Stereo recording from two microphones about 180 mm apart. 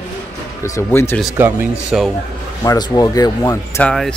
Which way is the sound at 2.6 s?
20° left (ahead or behind).